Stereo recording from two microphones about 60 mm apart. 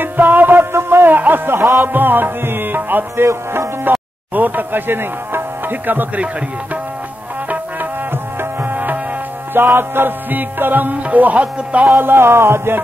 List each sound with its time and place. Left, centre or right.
0.0 s music: right
3.9 s speech: right
7.4 s music: right
8.1 s music: right
12.0 s music: right